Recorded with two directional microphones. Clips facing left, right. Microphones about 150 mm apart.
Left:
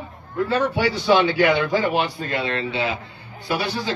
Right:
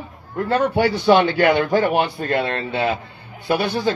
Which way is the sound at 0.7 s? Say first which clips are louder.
Right 4 dB; 55° right (ahead or behind).